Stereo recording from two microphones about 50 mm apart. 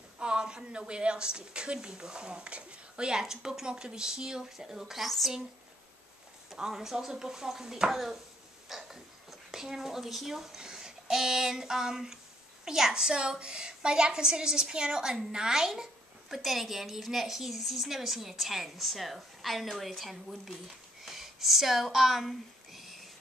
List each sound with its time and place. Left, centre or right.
0.2 s a woman's voice: centre
6.5 s a woman's voice: centre